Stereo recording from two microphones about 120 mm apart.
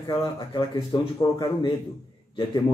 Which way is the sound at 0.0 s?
40° left (ahead or behind).